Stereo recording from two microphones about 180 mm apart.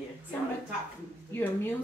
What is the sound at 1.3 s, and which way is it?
Speech, 10° left (ahead or behind).